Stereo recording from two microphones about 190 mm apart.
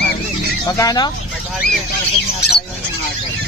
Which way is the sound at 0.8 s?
20° left (ahead or behind).